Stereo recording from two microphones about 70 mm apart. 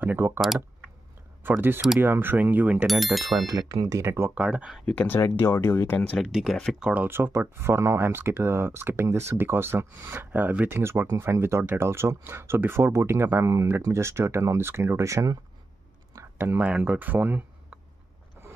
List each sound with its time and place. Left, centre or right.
0.0 s speech: right
1.4 s speech: right
2.9 s speech: centre
3.4 s speech: right
4.0 s speech: right
4.4 s speech: centre
5.3 s speech: left
6.2 s speech: centre
6.8 s speech: centre
7.1 s speech: right
10.8 s speech: right
16.3 s speech: right